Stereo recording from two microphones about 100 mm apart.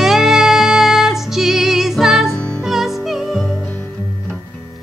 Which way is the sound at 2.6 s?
Centre (ahead or behind).